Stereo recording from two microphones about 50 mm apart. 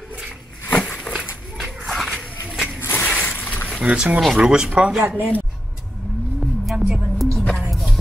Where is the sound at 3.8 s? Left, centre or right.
Right.